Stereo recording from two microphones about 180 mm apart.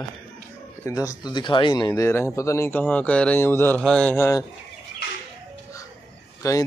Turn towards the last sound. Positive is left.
turn(degrees=20)  # may be behind; listen again after turning